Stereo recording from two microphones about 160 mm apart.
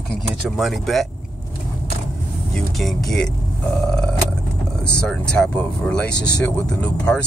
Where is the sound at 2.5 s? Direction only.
Centre (ahead or behind).